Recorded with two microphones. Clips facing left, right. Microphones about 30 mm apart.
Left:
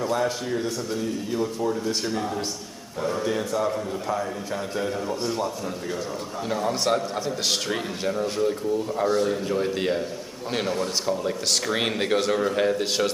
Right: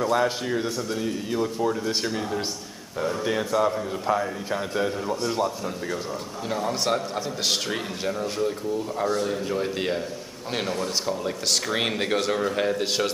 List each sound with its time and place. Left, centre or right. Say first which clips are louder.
0.1 s a man's voice: right 2 dB; centre
3.3 s a man's voice: right 4 dB; centre
6.5 s a man's voice: left 1 dB; centre